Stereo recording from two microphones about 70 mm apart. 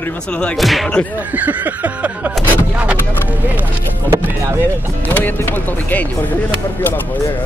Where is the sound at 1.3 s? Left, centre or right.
Right.